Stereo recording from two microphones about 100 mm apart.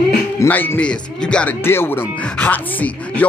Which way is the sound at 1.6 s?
25° left (ahead or behind).